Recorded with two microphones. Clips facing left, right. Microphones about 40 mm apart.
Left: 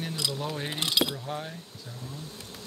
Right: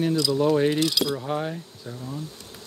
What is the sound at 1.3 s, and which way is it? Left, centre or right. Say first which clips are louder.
Speech: right 8 dB; right.